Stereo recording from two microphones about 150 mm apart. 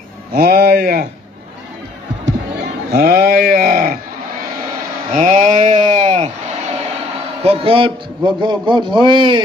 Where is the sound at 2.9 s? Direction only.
90° right; by 3.9 s 70° right (ahead or behind).